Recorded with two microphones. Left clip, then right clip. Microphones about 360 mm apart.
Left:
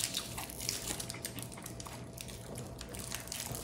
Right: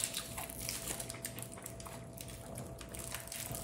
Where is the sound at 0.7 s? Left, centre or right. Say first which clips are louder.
Left 6 dB; centre.